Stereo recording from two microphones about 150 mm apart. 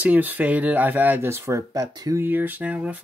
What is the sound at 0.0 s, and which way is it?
Speech, 10° right (ahead or behind).